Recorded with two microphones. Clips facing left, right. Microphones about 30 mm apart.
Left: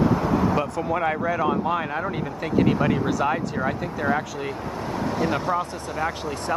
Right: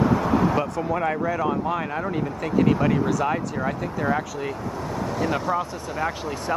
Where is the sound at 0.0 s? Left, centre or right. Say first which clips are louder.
Right 1 dB; centre.